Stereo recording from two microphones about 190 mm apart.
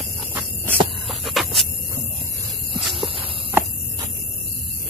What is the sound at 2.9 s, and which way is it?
Walk, 25° right (ahead or behind).